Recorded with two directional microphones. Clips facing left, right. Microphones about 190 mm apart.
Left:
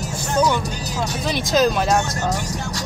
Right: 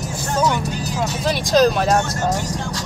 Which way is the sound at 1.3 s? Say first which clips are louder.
Right 3 dB; centre (ahead or behind).